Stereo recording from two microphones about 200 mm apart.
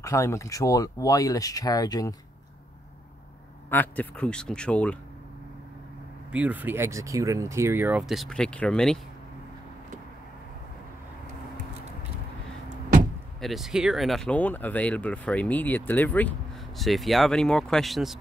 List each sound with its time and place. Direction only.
0.0 s speech: 15° left (ahead or behind)
3.7 s speech: 10° left (ahead or behind)
6.3 s speech: 5° right (ahead or behind)
13.4 s speech: centre (ahead or behind)